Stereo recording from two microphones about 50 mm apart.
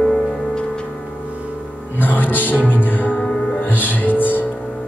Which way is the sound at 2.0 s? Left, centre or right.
Left.